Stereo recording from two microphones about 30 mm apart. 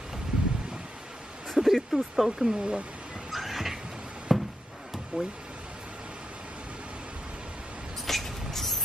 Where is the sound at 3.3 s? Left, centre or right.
Centre.